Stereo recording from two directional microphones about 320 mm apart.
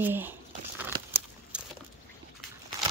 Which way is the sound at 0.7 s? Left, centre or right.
Centre.